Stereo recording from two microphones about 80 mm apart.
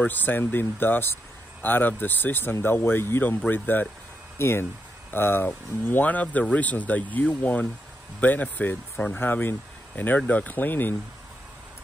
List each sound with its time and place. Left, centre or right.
0.0 s speech: left